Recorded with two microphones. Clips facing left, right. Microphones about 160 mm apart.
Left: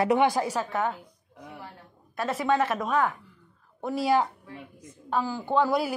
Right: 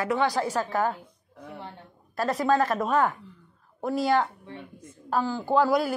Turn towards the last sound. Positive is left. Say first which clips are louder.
# right 2 dB
turn(degrees=0)  # may be behind; listen again after turning